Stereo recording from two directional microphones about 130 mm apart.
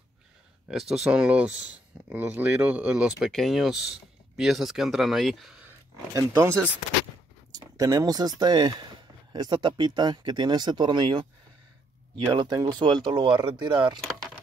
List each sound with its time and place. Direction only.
0.7 s speech: 5° right (ahead or behind)
6.1 s speech: 25° right (ahead or behind)
12.3 s speech: 35° right (ahead or behind)